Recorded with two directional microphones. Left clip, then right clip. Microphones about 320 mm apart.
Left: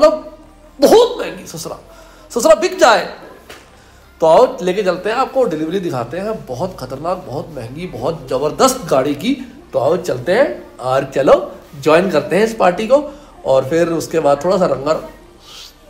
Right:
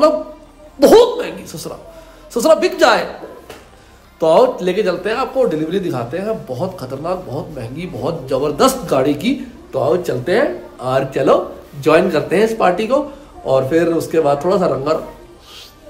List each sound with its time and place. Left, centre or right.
0.7 s a man's voice: centre
4.2 s a man's voice: centre